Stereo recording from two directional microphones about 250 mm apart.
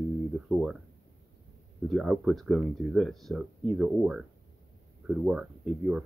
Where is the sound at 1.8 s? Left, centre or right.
Centre.